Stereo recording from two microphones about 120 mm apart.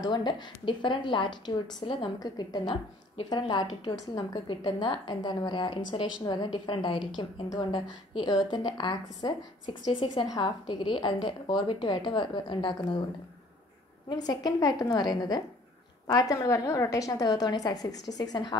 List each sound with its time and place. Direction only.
0.0 s a woman's voice: 35° left (ahead or behind)
14.0 s a woman's voice: 35° left (ahead or behind)